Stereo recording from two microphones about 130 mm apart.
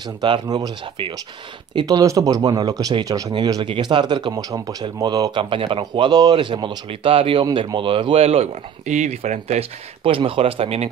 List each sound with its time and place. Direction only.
0.0 s speech: 35° right (ahead or behind)
3.6 s speech: 40° right (ahead or behind); by 9.7 s 60° right (ahead or behind)
10.0 s speech: 45° right (ahead or behind)